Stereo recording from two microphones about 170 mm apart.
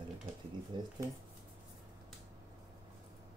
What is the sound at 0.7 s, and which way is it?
Speech, 25° right (ahead or behind).